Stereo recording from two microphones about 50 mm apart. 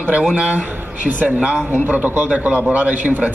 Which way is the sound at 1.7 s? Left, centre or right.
Right.